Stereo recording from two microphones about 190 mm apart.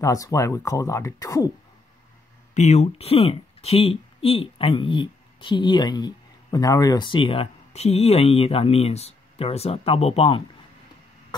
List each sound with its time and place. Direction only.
0.0 s speech: 15° left (ahead or behind)
2.5 s speech: 35° left (ahead or behind)